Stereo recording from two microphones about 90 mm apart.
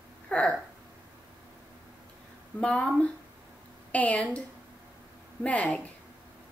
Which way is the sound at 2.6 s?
10° left (ahead or behind).